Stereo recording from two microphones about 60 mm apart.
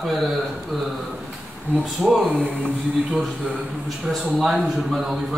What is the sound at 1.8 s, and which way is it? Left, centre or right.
Speech, centre.